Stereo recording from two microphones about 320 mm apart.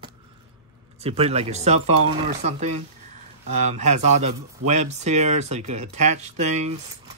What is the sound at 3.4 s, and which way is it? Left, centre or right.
Speech, right.